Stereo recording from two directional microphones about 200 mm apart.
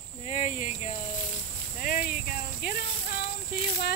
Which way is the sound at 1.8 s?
45° left (ahead or behind).